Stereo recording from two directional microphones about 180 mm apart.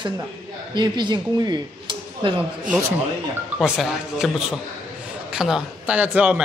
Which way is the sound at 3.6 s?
Centre (ahead or behind).